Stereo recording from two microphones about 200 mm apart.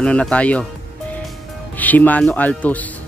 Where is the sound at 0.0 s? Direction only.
5° left (ahead or behind).